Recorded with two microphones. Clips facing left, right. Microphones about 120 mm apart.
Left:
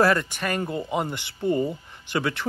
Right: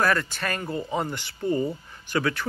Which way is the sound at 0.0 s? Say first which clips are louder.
Left 3 dB; 20° left (ahead or behind).